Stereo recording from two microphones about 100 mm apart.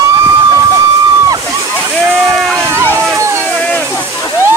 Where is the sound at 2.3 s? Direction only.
Centre (ahead or behind).